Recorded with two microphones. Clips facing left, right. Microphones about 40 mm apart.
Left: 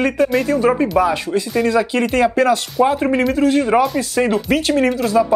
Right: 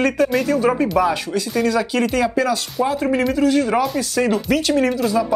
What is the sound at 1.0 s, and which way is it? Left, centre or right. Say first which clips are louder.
Speech: left 2 dB; centre.